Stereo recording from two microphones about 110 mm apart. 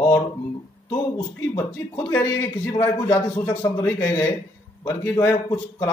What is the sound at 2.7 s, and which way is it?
Speech, 30° left (ahead or behind).